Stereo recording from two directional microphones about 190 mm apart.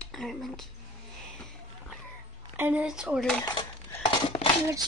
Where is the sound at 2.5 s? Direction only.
10° right (ahead or behind).